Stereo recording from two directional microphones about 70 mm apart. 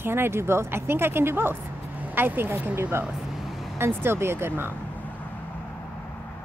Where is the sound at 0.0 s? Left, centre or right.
Right.